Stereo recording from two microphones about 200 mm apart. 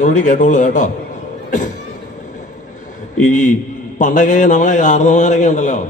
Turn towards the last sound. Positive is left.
turn(degrees=35)  # may be behind; listen again after turning